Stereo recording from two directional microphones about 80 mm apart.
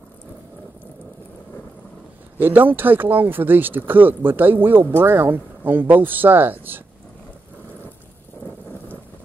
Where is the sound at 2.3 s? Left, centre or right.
Right.